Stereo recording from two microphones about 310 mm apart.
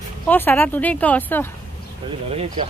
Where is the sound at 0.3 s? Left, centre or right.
Centre.